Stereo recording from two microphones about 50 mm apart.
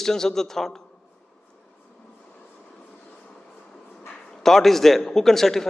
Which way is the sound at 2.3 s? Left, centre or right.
Left.